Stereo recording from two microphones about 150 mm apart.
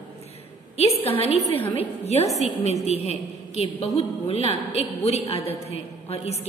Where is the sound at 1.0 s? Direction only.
40° left (ahead or behind).